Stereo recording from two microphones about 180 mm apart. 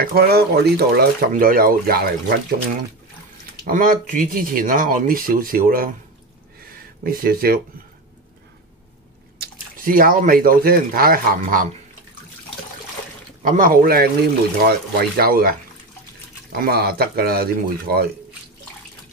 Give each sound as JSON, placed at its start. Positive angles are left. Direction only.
{"t": 0.1, "sound": "speech", "side_deg": -60}
{"t": 3.6, "sound": "speech", "side_deg": -50}
{"t": 9.4, "sound": "speech", "side_deg": -50}
{"t": 13.4, "sound": "speech", "side_deg": -50}
{"t": 16.5, "sound": "speech", "side_deg": -60}